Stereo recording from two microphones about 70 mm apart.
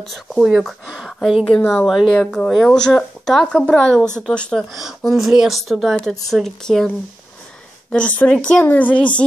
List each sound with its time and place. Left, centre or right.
0.0 s speech: centre
4.6 s speech: centre
7.9 s speech: centre